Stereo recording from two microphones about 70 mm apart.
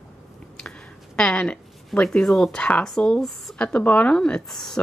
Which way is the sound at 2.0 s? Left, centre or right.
Centre.